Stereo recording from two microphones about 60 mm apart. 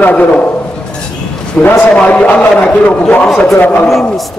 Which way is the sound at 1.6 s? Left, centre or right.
Left.